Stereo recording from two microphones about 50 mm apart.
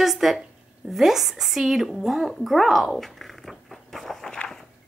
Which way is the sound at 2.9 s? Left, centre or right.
Centre.